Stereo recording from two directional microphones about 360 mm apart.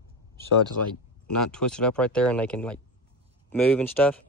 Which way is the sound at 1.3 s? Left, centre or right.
Centre.